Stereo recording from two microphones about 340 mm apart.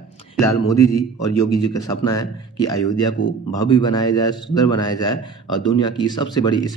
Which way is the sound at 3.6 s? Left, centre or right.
Centre.